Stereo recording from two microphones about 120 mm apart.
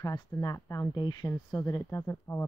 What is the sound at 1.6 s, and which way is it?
Speech, 20° left (ahead or behind).